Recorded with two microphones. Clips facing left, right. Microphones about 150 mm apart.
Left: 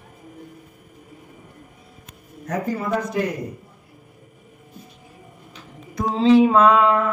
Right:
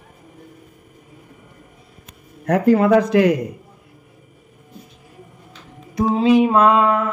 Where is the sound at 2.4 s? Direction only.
70° right (ahead or behind); by 3.4 s 90° right.